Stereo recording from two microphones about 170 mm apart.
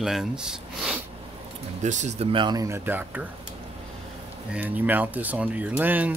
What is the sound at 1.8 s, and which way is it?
Speech, 45° right (ahead or behind).